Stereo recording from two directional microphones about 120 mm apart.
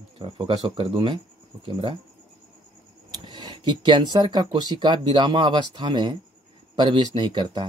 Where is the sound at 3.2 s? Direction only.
40° right (ahead or behind).